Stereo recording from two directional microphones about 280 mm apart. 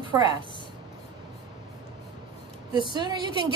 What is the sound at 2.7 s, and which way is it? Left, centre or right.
Speech, centre.